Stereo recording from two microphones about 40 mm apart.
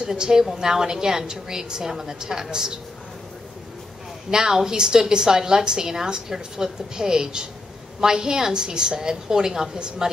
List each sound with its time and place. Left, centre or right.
0.0 s a woman's voice: centre
4.3 s a woman's voice: centre